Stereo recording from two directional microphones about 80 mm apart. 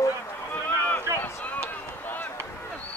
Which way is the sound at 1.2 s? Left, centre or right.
Left.